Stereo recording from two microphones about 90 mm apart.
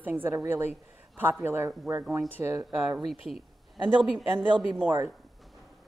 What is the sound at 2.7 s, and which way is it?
Speech, centre (ahead or behind).